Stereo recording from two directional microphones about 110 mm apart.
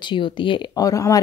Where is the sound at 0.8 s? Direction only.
30° left (ahead or behind).